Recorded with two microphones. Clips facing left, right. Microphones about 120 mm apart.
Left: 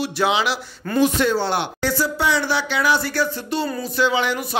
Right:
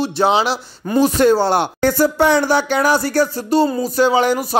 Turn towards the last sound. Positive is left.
turn(degrees=-40)  # may be behind; listen again after turning